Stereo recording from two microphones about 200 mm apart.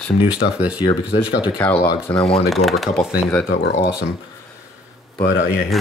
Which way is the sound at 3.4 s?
45° left (ahead or behind).